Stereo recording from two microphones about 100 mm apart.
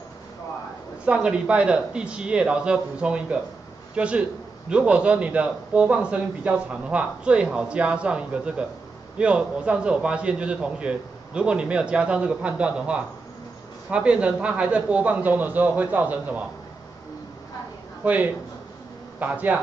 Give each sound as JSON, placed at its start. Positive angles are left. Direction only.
{"t": 1.0, "sound": "a man's voice", "side_deg": -10}
{"t": 18.0, "sound": "a man's voice", "side_deg": -15}